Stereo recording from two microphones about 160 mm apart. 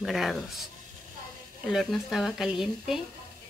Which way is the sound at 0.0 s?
Centre (ahead or behind).